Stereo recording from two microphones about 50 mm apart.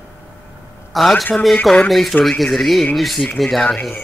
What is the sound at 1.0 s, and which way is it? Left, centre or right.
Speech, centre.